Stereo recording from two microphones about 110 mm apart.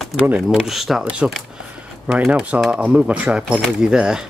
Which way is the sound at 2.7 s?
10° right (ahead or behind).